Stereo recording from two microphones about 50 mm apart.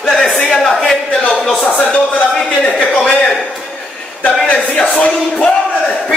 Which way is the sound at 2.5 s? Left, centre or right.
Left.